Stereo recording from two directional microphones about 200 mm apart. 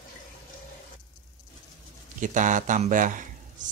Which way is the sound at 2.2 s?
40° right (ahead or behind).